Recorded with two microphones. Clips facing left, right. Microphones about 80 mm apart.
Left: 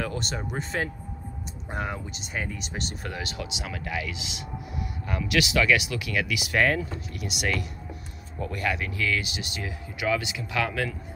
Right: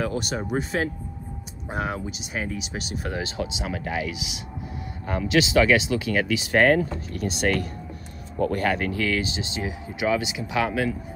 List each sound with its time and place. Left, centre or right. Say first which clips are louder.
0.0 s speech: right 4 dB; centre
3.1 s speech: right 5 dB; right
5.3 s speech: right 4 dB; right